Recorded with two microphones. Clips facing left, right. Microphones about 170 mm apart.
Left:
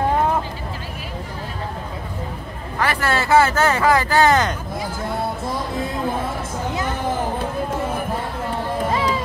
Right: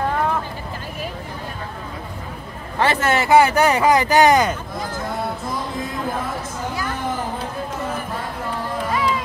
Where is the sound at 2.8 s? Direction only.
25° right (ahead or behind).